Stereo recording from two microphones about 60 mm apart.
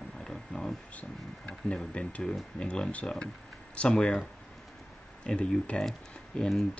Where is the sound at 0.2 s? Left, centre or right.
Centre.